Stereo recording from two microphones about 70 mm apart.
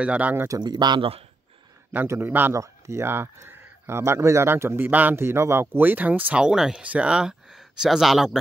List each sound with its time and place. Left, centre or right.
0.0 s speech: centre
0.6 s speech: right
2.1 s speech: right
2.5 s speech: right
6.4 s speech: centre
6.8 s speech: centre